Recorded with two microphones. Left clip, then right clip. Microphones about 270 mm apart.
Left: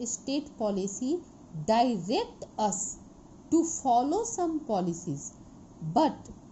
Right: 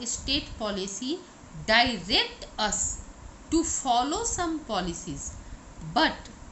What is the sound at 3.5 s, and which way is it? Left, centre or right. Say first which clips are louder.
A woman's voice: even; centre.